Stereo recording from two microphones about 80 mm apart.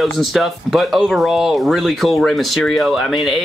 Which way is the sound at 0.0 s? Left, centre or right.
Centre.